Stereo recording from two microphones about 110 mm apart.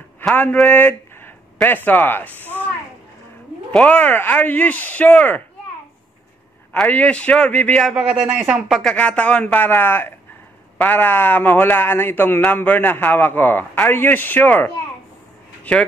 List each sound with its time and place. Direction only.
0.3 s speech: 15° left (ahead or behind)
3.7 s a man's voice: 10° left (ahead or behind)
6.7 s a man's voice: 15° left (ahead or behind)
7.9 s speech: 5° right (ahead or behind)
8.9 s a man's voice: 10° left (ahead or behind)